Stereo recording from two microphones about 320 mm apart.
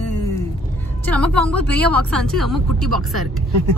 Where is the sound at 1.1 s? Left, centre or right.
Centre.